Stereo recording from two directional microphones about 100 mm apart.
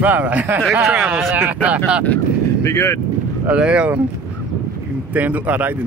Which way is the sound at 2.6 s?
30° left (ahead or behind).